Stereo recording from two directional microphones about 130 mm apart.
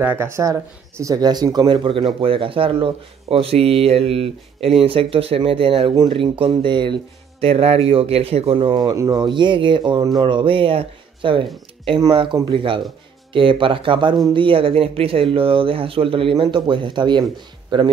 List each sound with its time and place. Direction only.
0.0 s speech: 15° right (ahead or behind); by 17.9 s 35° right (ahead or behind)